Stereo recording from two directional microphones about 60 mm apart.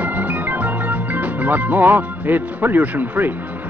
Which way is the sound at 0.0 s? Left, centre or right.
Right.